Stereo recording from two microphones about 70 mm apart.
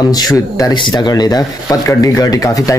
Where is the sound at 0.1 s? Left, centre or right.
Left.